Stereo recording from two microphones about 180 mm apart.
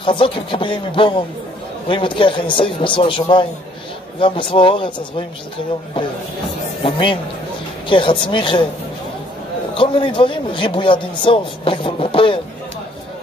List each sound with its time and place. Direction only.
0.0 s a man's voice: 30° left (ahead or behind)
6.8 s a man's voice: 30° left (ahead or behind)
9.8 s a man's voice: 30° left (ahead or behind)